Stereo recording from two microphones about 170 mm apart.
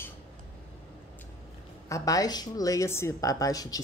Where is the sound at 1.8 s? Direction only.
20° left (ahead or behind).